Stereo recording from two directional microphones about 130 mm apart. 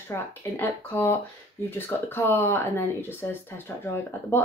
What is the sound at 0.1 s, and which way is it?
Speech, 15° left (ahead or behind).